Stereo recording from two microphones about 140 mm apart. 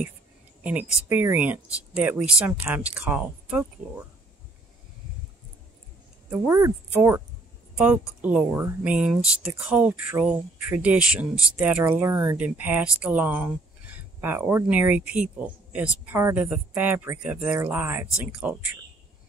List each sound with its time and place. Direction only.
0.7 s speech: 10° right (ahead or behind)
6.3 s speech: 25° right (ahead or behind)